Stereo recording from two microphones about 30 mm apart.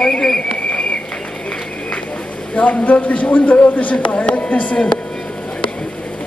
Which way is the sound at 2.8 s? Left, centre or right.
Left.